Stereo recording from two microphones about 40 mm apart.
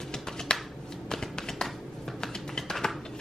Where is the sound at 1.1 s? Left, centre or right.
Centre.